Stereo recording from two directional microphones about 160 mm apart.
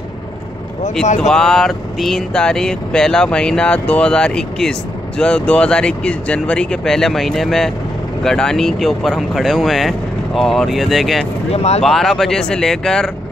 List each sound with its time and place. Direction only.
1.0 s speech: 45° left (ahead or behind)
1.3 s speech: 5° left (ahead or behind)
11.5 s speech: 40° left (ahead or behind)
11.8 s speech: centre (ahead or behind)